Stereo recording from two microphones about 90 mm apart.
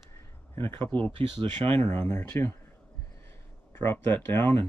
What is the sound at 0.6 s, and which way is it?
Speech, 25° left (ahead or behind).